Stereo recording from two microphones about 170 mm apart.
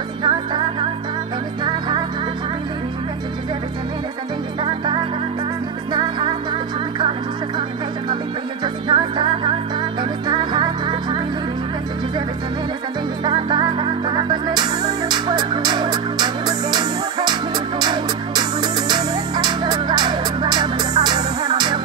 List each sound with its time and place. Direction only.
0.2 s music: 25° right (ahead or behind)
4.6 s music: 30° right (ahead or behind)
8.8 s music: 30° right (ahead or behind)
13.2 s music: 25° right (ahead or behind)